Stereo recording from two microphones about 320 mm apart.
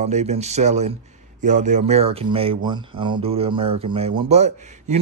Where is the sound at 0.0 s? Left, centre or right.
Right.